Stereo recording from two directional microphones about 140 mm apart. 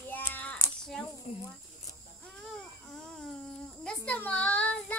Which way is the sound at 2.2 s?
5° left (ahead or behind).